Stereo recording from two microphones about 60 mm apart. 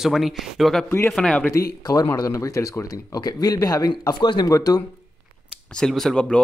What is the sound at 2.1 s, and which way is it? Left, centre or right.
Speech, left.